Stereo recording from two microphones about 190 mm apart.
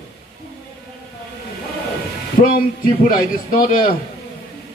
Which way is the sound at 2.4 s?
45° left (ahead or behind).